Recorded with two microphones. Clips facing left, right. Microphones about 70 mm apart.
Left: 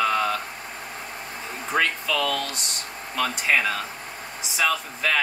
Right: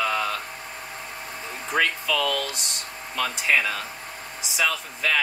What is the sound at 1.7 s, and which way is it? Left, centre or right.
Speech, centre.